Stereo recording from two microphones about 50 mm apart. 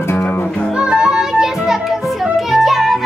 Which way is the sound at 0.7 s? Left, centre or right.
Centre.